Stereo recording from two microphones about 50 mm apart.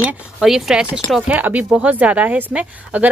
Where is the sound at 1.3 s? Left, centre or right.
Right.